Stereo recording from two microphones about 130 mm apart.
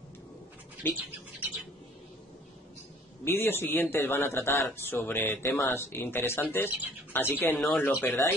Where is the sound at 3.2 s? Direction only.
15° left (ahead or behind).